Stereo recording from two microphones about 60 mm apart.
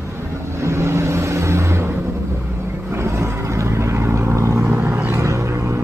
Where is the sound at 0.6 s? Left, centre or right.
Right.